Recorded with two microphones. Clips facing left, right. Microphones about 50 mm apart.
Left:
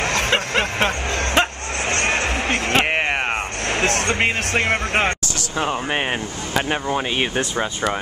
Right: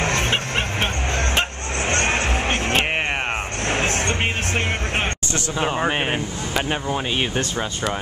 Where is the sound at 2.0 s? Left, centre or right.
Left.